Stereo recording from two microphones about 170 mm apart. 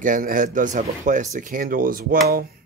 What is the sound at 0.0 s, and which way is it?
Speech, 50° right (ahead or behind).